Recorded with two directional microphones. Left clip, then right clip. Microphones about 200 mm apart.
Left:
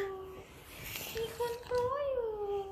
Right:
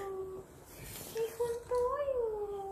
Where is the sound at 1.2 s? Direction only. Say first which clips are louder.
Right 2 dB; 5° left (ahead or behind).